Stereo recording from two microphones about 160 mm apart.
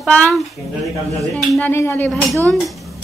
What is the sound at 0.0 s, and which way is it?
Speech, 5° left (ahead or behind).